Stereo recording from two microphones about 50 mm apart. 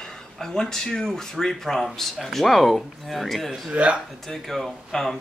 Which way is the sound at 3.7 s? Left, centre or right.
Right.